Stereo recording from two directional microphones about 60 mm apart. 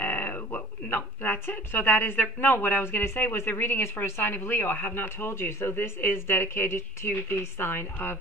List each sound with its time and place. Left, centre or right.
0.0 s speech: left